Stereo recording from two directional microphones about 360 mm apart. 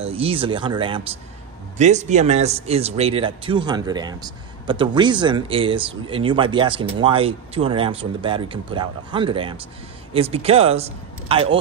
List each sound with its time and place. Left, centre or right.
0.0 s speech: centre